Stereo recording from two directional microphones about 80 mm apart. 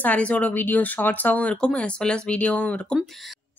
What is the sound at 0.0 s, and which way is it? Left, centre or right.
Speech, centre.